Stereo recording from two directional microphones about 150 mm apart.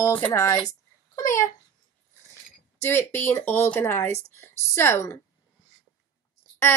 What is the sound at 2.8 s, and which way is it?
Speech, 15° left (ahead or behind).